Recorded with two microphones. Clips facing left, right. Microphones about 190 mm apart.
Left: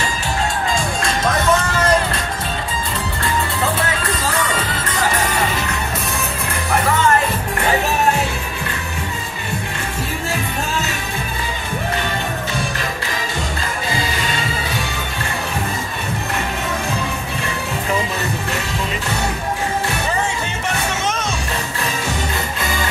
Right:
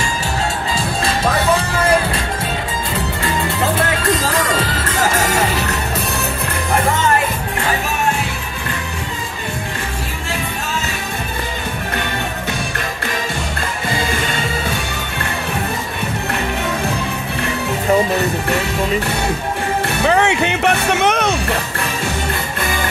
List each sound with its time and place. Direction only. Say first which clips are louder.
5.2 s music: right 3 dB; 45° right (ahead or behind)
20.1 s music: right 7 dB; 70° right (ahead or behind)